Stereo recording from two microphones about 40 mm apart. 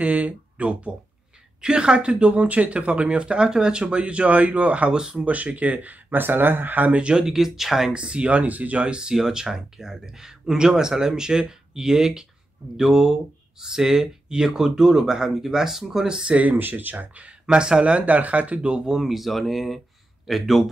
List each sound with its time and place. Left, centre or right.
0.0 s speech: right
4.9 s speech: centre
5.2 s speech: right
6.9 s speech: right
7.2 s speech: centre
7.9 s speech: right
8.8 s speech: right
16.3 s speech: right
16.5 s speech: right
16.9 s speech: right
18.9 s speech: centre